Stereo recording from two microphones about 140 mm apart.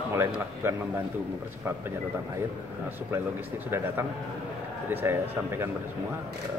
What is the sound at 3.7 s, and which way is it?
Speech, 15° right (ahead or behind).